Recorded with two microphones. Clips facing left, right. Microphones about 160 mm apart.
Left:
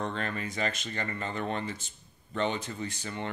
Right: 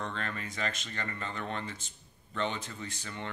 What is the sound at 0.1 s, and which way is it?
Speech, 15° left (ahead or behind).